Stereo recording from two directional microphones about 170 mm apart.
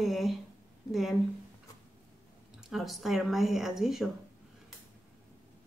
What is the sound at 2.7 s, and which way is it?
Speech, centre (ahead or behind).